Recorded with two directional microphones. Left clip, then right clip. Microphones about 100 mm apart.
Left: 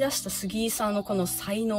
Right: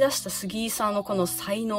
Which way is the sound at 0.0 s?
40° right (ahead or behind).